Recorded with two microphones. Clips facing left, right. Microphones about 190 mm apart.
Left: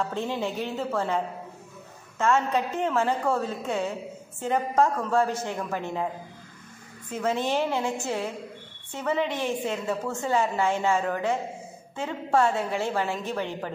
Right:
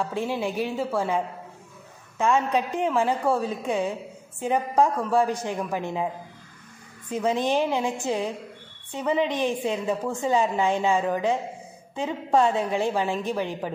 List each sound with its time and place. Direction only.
0.1 s a woman's voice: 10° right (ahead or behind)
7.1 s a woman's voice: 15° right (ahead or behind)